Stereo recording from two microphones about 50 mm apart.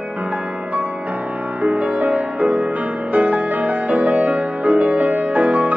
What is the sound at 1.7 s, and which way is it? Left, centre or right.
Music, right.